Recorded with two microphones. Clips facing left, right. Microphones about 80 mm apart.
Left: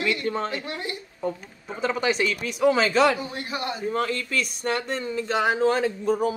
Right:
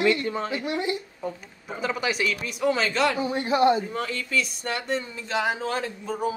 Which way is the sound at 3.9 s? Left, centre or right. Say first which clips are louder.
Left 2 dB; left.